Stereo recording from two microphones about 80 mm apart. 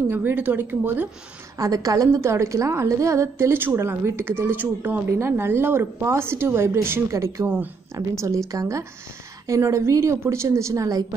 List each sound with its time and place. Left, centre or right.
0.1 s a woman's voice: right
1.6 s a woman's voice: right
7.4 s a woman's voice: right
7.9 s a woman's voice: right